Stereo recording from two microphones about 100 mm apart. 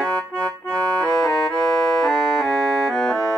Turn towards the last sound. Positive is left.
turn(degrees=5)  # may be behind; listen again after turning